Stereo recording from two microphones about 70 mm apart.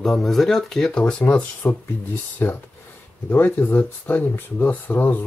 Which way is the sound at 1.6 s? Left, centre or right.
Left.